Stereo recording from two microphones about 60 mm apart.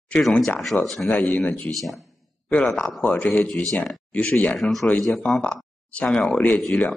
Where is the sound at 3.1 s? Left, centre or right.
Left.